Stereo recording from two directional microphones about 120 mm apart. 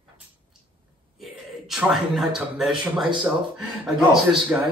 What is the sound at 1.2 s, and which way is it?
A man's voice, 5° right (ahead or behind).